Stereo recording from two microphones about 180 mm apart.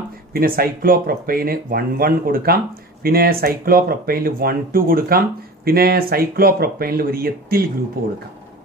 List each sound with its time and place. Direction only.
0.3 s speech: 55° right (ahead or behind)